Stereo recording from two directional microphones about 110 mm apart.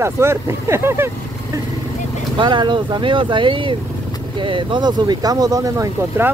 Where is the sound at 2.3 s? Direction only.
45° right (ahead or behind).